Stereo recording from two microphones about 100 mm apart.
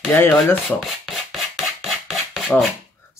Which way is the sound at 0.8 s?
Centre (ahead or behind).